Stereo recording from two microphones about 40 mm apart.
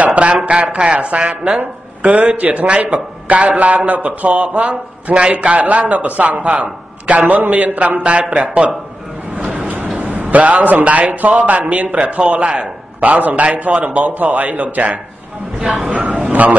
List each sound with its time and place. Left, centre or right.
0.0 s a sound: right
2.0 s a man's voice: right
9.5 s vehicle: right
9.9 s a man's voice: right